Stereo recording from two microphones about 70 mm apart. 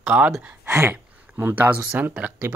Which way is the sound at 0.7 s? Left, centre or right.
Right.